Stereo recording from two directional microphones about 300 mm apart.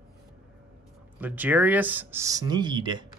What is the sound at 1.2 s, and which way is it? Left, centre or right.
Speech, centre.